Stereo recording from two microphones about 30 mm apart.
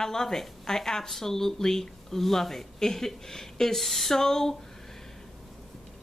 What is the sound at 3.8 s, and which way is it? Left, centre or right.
Speech, centre.